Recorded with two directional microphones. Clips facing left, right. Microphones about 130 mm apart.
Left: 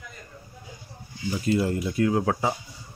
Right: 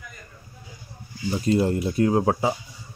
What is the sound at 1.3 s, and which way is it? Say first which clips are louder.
Speech: right 3 dB; 30° right (ahead or behind).